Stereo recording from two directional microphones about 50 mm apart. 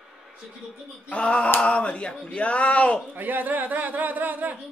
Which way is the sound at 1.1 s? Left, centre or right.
Left.